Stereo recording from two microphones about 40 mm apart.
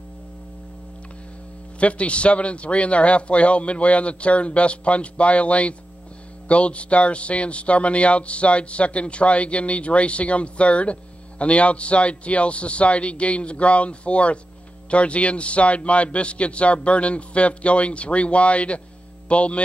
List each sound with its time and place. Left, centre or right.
1.8 s a man's voice: left